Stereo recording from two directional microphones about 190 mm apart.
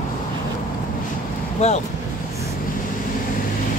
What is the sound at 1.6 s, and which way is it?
Speech, 35° left (ahead or behind).